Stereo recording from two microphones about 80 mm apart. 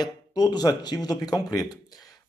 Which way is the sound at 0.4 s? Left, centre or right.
Left.